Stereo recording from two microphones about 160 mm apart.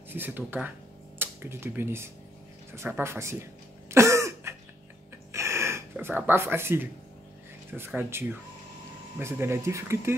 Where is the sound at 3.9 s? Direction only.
15° right (ahead or behind).